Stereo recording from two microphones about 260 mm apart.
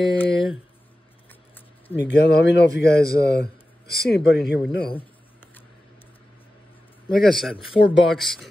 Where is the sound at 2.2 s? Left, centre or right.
Left.